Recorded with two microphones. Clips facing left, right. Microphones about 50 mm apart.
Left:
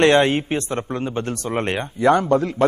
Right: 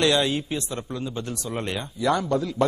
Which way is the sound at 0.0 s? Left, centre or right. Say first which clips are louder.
Left 7 dB; left.